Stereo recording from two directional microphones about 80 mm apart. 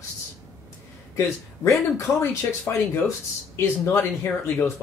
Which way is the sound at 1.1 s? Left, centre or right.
Left.